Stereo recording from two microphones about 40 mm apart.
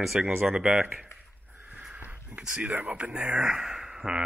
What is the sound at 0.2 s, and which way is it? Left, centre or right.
Speech, right.